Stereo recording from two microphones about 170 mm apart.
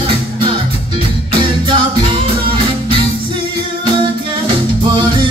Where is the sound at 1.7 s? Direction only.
30° right (ahead or behind).